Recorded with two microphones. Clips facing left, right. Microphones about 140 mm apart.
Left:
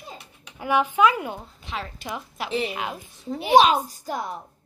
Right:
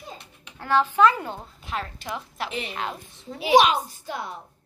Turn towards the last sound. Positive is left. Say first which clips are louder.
# left 2 dB
turn(degrees=45)  # may be behind; listen again after turning